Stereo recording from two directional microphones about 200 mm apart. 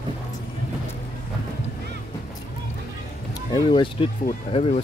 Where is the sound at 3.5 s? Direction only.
25° left (ahead or behind).